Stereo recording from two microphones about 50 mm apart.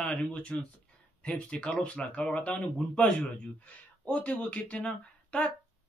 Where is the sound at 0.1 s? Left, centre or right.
Centre.